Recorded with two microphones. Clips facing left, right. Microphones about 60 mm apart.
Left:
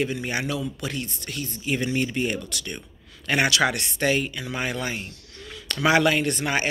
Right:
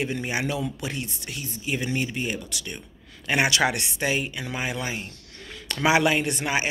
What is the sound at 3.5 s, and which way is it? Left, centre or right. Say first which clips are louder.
Speech: left 1 dB; right.